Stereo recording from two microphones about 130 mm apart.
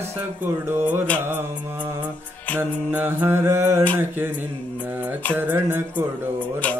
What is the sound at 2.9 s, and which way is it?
Mantra, 15° right (ahead or behind).